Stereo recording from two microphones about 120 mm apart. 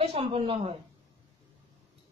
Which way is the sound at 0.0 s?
55° right (ahead or behind).